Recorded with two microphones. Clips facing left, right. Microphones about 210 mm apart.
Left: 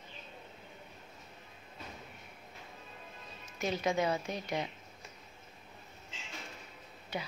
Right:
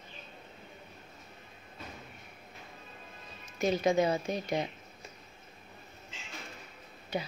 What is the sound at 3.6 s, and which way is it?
Speech, 40° right (ahead or behind).